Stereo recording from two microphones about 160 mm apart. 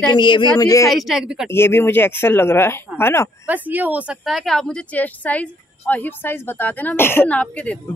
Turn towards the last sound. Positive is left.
turn(degrees=10)  # may be behind; listen again after turning